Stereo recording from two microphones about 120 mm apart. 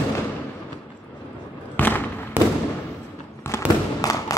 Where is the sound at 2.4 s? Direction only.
15° right (ahead or behind).